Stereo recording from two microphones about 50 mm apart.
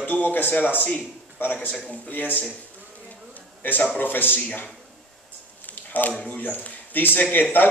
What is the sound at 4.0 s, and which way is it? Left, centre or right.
Speech, left.